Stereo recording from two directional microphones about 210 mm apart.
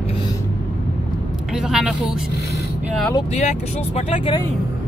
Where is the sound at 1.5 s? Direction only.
Centre (ahead or behind).